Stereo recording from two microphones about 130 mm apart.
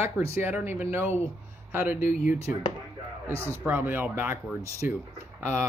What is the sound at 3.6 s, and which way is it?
Speech, 15° right (ahead or behind).